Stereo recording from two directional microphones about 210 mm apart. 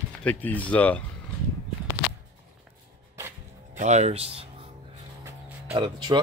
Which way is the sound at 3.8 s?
35° right (ahead or behind).